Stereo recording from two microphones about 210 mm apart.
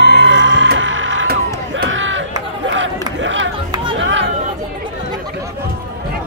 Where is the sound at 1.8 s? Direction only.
65° right (ahead or behind).